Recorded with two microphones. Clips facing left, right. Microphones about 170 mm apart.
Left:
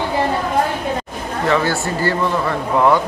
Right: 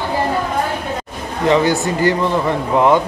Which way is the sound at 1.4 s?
20° right (ahead or behind).